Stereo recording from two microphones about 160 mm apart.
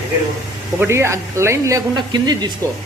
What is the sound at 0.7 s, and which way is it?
A man's voice, 15° right (ahead or behind).